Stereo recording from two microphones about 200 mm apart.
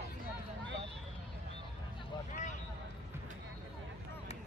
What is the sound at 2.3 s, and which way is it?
Vehicle, 35° left (ahead or behind).